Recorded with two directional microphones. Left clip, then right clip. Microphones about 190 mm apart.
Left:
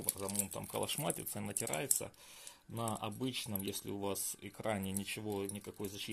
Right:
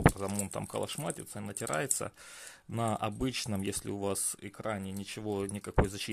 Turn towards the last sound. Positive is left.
turn(degrees=-40)  # may be behind; listen again after turning